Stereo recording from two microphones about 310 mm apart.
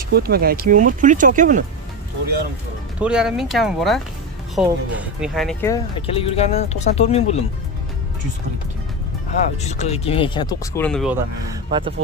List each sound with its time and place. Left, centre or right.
0.1 s speech: right
3.0 s speech: centre
9.6 s speech: left; by 11.1 s centre
11.7 s speech: centre